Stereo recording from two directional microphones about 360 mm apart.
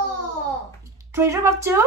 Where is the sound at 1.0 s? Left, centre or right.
Centre.